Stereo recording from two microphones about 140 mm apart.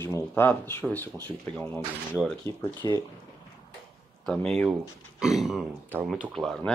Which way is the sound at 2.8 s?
25° left (ahead or behind).